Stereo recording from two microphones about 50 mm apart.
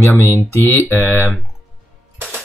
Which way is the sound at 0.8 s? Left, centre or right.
Left.